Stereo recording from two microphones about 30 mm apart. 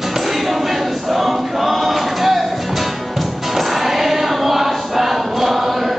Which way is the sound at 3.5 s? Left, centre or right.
Centre.